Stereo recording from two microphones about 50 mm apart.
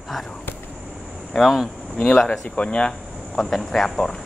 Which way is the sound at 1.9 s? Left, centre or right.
Centre.